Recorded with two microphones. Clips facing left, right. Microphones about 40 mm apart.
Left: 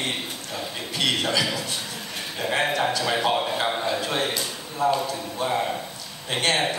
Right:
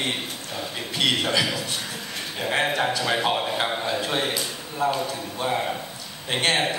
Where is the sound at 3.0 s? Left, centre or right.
Centre.